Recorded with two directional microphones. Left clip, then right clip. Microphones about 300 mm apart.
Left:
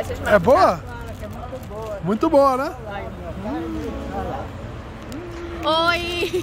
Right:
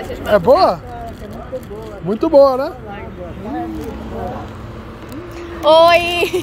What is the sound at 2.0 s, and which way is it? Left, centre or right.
Speech, centre.